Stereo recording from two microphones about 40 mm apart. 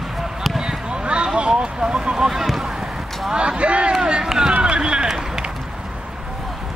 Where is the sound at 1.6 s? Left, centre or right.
Right.